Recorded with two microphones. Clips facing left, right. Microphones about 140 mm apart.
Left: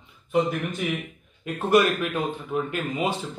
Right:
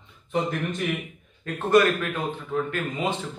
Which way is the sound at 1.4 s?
15° left (ahead or behind).